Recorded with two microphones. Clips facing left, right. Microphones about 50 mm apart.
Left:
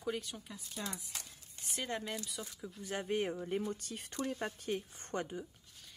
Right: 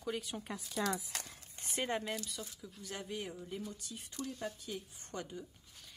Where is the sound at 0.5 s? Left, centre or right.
Right.